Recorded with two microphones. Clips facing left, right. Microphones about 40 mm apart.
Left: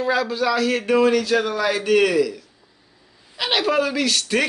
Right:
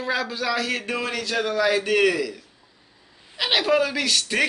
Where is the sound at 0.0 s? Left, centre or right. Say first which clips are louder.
Left 5 dB; centre.